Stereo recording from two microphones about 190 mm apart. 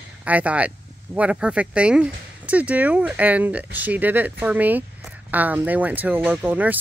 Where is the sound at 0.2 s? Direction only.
5° right (ahead or behind).